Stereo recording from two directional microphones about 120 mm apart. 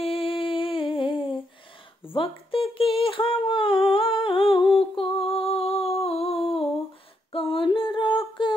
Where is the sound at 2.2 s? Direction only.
50° left (ahead or behind).